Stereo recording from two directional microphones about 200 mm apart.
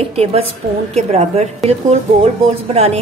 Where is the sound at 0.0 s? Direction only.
30° right (ahead or behind).